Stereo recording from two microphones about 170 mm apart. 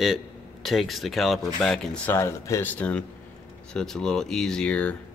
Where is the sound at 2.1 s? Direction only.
15° left (ahead or behind).